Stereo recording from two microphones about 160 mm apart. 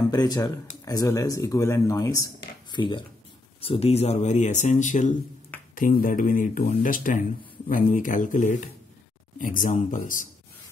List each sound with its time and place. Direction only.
0.1 s speech: 25° left (ahead or behind); by 9.9 s 55° left (ahead or behind)